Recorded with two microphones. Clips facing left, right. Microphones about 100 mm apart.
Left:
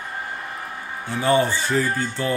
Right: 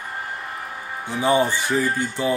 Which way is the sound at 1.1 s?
15° right (ahead or behind).